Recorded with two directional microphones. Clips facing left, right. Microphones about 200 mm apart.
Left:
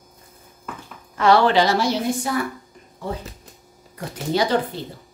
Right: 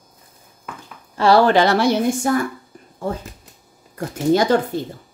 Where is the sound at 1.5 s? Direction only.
60° right (ahead or behind).